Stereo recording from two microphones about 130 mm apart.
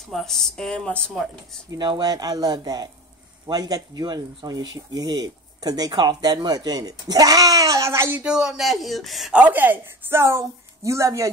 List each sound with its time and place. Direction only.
0.1 s speech: centre (ahead or behind)
1.7 s speech: 35° right (ahead or behind)
8.2 s speech: 5° right (ahead or behind); by 11.2 s 25° right (ahead or behind)